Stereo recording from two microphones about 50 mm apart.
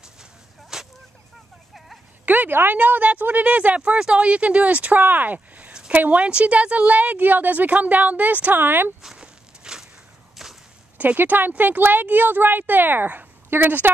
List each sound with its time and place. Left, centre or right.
0.0 s whip: centre
2.2 s a woman's voice: right
5.0 s a woman's voice: right
9.0 s walk: centre
10.3 s whip: centre
11.1 s a woman's voice: right